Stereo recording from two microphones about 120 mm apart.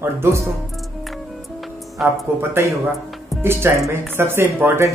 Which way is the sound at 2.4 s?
20° right (ahead or behind).